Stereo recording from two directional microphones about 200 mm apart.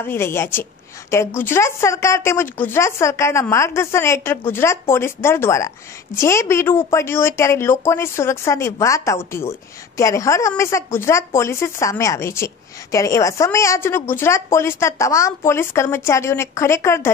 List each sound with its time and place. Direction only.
0.0 s a woman's voice: 10° left (ahead or behind)